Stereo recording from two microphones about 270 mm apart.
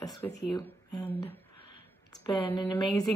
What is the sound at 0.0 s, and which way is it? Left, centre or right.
Speech, centre.